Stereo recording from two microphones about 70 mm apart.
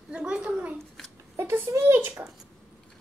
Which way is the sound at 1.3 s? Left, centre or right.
Right.